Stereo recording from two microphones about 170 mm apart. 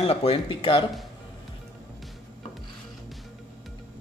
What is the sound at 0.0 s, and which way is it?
Speech, 35° left (ahead or behind).